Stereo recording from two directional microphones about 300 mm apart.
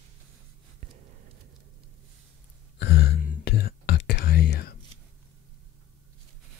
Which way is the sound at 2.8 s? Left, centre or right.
Left.